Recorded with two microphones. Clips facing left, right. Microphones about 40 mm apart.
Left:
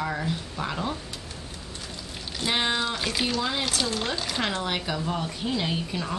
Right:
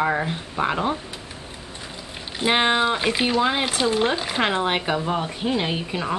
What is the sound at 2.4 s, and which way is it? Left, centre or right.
Speech, right.